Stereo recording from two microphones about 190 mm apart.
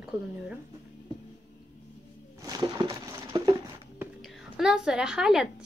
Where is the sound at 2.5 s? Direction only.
20° right (ahead or behind).